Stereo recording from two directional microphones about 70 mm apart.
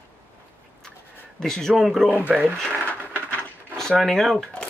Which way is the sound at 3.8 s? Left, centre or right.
Centre.